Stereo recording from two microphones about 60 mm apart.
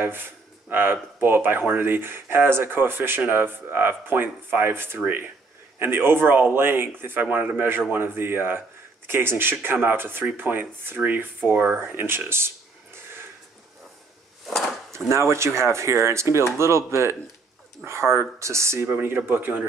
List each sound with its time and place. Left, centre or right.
0.0 s speech: right
7.9 s speech: right
15.0 s speech: right
18.9 s speech: right